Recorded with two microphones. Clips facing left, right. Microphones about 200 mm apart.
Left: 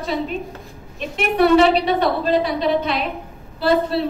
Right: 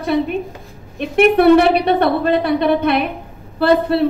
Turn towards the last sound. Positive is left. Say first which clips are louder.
# right 4 dB
turn(degrees=-60)  # may be behind; listen again after turning